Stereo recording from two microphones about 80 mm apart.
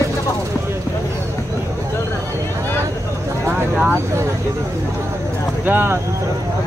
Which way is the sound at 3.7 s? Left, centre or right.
Centre.